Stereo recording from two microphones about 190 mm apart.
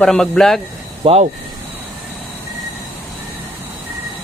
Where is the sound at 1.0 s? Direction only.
35° right (ahead or behind).